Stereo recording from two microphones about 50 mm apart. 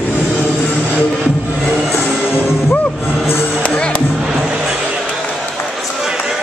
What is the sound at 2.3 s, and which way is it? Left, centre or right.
Music, left.